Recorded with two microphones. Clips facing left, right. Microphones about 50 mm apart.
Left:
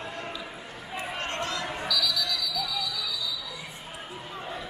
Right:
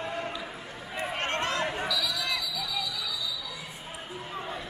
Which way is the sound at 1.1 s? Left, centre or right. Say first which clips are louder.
Right 3 dB; right.